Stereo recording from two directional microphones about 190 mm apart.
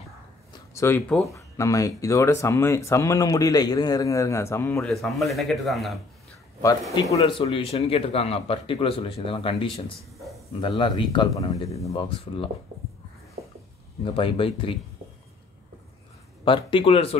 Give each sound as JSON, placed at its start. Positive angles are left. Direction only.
{"t": 0.5, "sound": "a sound", "side_deg": 15}
{"t": 1.3, "sound": "speech", "side_deg": 15}
{"t": 4.8, "sound": "speech", "side_deg": 0}
{"t": 7.0, "sound": "speech", "side_deg": 20}
{"t": 10.1, "sound": "a sound", "side_deg": 0}
{"t": 10.6, "sound": "speech", "side_deg": 25}
{"t": 11.9, "sound": "speech", "side_deg": 30}
{"t": 14.0, "sound": "speech", "side_deg": 30}
{"t": 16.4, "sound": "speech", "side_deg": 25}